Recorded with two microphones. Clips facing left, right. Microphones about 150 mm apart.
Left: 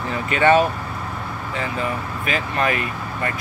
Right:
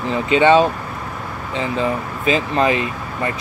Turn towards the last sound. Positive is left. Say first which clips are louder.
# right 3 dB
turn(degrees=-20)  # may be behind; listen again after turning